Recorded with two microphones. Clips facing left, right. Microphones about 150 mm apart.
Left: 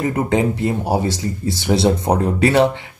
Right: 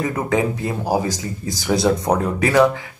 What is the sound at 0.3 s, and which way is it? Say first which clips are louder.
Speech: left 2 dB; 25° left (ahead or behind).